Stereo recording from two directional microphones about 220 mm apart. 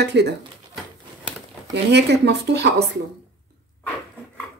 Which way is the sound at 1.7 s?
50° right (ahead or behind).